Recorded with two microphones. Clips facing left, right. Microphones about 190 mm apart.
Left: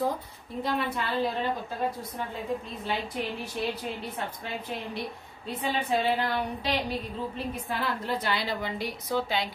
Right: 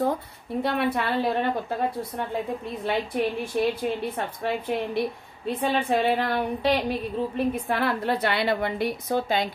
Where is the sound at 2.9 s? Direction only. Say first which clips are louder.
Right 5 dB; 60° right (ahead or behind).